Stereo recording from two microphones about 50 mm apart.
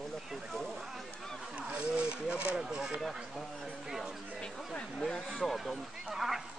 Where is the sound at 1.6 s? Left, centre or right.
Right.